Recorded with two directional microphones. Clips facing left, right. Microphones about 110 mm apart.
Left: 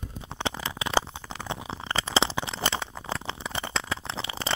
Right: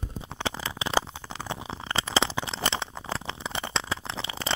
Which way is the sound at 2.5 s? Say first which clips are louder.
Even; 25° right (ahead or behind).